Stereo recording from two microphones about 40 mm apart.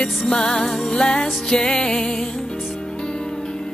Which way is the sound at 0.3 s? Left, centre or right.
Centre.